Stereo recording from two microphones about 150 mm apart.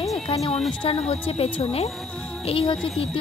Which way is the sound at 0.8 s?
40° left (ahead or behind).